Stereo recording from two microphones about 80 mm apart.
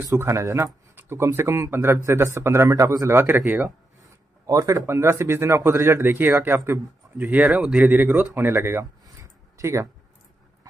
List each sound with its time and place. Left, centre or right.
0.1 s speech: right
4.5 s speech: right
9.0 s a sound: right